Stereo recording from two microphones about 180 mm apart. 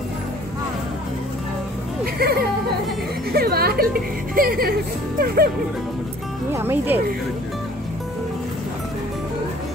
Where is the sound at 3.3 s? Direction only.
60° right (ahead or behind).